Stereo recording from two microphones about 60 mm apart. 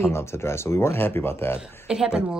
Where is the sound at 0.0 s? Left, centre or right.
Left.